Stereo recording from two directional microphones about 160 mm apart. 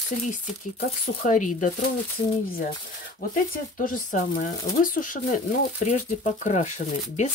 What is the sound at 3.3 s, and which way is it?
Speech, 60° left (ahead or behind).